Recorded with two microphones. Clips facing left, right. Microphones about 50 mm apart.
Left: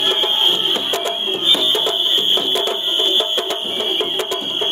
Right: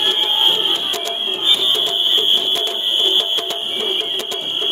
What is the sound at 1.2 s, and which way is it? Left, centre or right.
Music, centre.